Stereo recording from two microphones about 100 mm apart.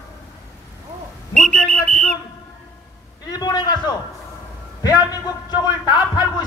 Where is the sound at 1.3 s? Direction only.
10° left (ahead or behind).